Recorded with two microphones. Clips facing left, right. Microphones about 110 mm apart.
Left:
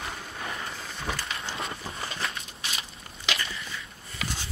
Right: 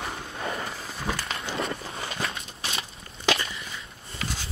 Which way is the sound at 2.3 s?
30° right (ahead or behind).